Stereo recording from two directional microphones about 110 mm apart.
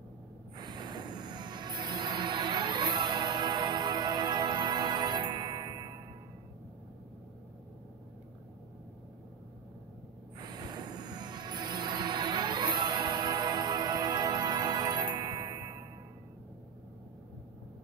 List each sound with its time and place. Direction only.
0.6 s music: 40° right (ahead or behind)
10.4 s music: 40° right (ahead or behind)